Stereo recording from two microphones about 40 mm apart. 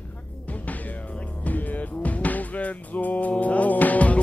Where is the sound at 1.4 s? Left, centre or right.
Left.